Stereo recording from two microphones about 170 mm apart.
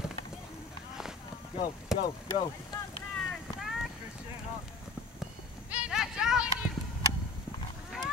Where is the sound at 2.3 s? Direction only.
25° left (ahead or behind).